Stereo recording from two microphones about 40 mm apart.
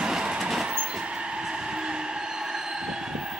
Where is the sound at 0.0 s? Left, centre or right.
Centre.